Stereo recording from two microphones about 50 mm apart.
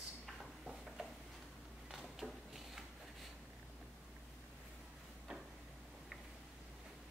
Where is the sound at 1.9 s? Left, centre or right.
Centre.